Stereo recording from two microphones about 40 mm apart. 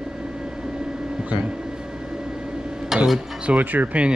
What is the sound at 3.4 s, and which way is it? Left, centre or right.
Speech, right.